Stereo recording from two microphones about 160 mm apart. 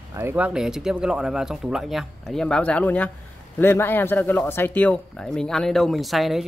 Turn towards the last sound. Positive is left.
turn(degrees=0)  # may be behind; listen again after turning